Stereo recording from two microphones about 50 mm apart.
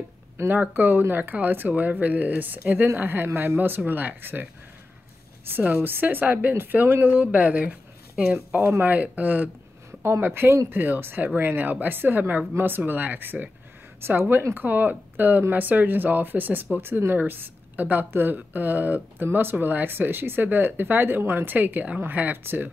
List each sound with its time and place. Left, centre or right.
0.5 s speech: right
5.9 s speech: right
8.5 s speech: right
10.0 s speech: right
14.0 s speech: right
14.5 s speech: right